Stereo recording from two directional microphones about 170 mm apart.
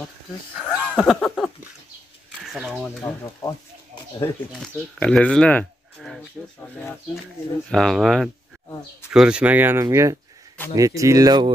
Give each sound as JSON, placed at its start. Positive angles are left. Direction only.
{"t": 0.6, "sound": "a sound", "side_deg": 5}
{"t": 2.3, "sound": "speech", "side_deg": -5}
{"t": 3.0, "sound": "speech", "side_deg": 20}
{"t": 4.5, "sound": "speech", "side_deg": 5}